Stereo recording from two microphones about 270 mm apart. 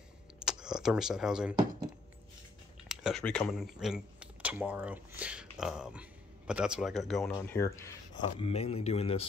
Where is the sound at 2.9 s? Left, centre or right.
Centre.